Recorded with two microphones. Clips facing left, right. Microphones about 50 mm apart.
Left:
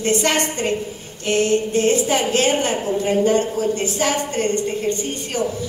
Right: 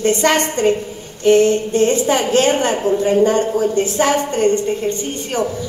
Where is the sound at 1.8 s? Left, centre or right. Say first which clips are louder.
Right 3 dB; right.